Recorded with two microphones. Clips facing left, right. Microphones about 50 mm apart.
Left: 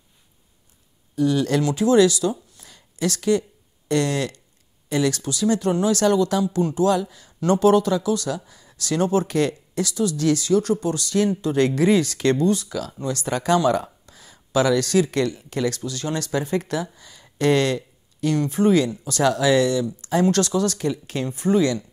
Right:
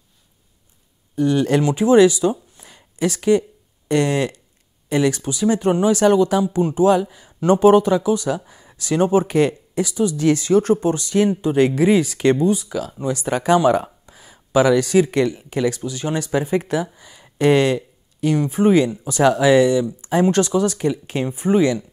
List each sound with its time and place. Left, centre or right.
1.1 s speech: right
2.5 s a sound: right
3.9 s speech: right